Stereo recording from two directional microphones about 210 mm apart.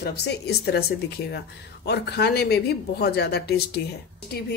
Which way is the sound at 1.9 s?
50° left (ahead or behind).